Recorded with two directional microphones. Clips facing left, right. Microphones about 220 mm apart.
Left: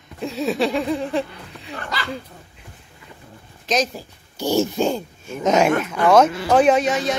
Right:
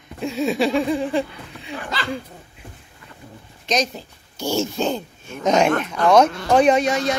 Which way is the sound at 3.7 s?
5° left (ahead or behind).